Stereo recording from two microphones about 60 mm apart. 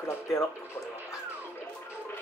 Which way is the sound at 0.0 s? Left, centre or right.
Left.